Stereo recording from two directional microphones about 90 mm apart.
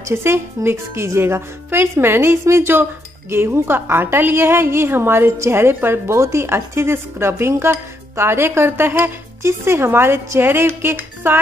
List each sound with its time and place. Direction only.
0.1 s a woman's voice: 30° right (ahead or behind)